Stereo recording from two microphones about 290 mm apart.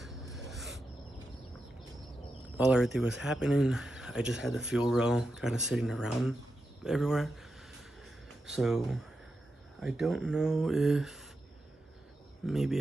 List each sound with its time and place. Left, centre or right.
0.0 s a sound: centre
2.6 s speech: centre
8.5 s speech: centre
12.4 s speech: centre